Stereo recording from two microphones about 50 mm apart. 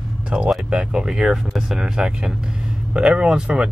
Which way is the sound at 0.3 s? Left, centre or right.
Centre.